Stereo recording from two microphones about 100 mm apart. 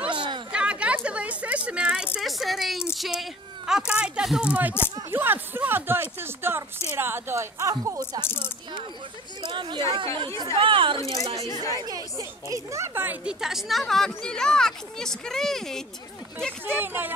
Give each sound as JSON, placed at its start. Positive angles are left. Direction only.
{"t": 0.1, "sound": "chatter", "side_deg": -55}
{"t": 0.5, "sound": "chatter", "side_deg": -10}
{"t": 1.0, "sound": "a sound", "side_deg": -15}
{"t": 2.2, "sound": "a woman's voice", "side_deg": 0}
{"t": 8.2, "sound": "speech", "side_deg": 25}
{"t": 9.5, "sound": "speech", "side_deg": -50}
{"t": 11.0, "sound": "speech", "side_deg": 35}
{"t": 11.8, "sound": "a woman's voice", "side_deg": -35}
{"t": 16.6, "sound": "speech", "side_deg": -20}